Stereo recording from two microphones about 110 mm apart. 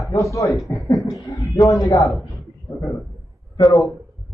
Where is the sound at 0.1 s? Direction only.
30° left (ahead or behind).